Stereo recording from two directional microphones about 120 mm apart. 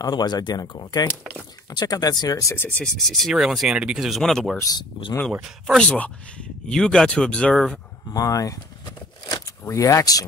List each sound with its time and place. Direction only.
0.0 s speech: 35° left (ahead or behind)
2.5 s speech: 15° left (ahead or behind)
2.8 s speech: 5° left (ahead or behind)
4.6 s speech: 30° left (ahead or behind)
5.9 s speech: 10° left (ahead or behind)
8.1 s speech: 30° left (ahead or behind)
9.2 s a sound: 30° left (ahead or behind)